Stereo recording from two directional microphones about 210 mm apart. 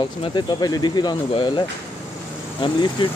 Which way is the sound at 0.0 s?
20° left (ahead or behind).